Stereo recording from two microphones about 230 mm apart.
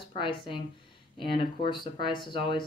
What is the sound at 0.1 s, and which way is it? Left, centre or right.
Speech, left.